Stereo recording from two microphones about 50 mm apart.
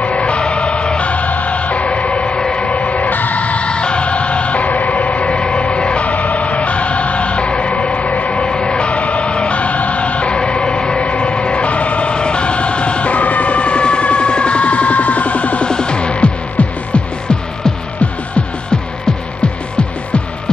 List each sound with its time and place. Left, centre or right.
0.0 s music: left
2.5 s vehicle: left
8.4 s vehicle: centre
15.7 s music: centre